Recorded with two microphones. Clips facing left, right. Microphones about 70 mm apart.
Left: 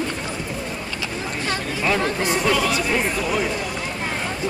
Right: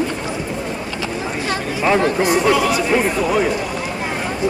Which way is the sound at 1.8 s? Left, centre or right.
Centre.